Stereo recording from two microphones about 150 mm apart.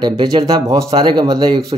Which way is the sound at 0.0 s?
25° right (ahead or behind).